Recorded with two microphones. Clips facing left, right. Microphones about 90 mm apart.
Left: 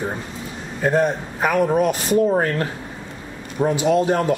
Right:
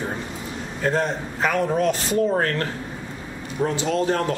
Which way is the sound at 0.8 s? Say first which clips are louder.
Left 4 dB; 15° left (ahead or behind).